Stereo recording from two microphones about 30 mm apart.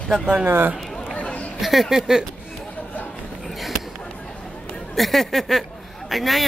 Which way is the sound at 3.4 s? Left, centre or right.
Centre.